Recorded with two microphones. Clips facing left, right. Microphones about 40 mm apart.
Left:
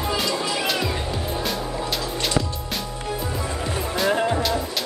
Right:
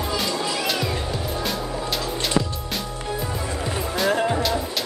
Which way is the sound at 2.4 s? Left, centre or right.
Centre.